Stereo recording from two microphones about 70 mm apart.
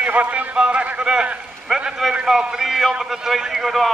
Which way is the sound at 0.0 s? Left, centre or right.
Right.